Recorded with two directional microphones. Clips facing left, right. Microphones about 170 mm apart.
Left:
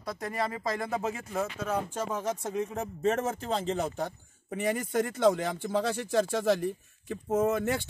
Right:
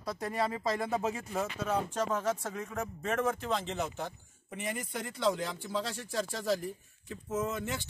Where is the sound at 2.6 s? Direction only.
35° left (ahead or behind).